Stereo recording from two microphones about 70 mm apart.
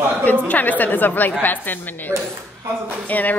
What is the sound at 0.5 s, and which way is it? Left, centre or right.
A woman's voice, left.